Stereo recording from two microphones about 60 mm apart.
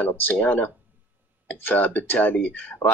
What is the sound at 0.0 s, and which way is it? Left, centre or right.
Speech, left.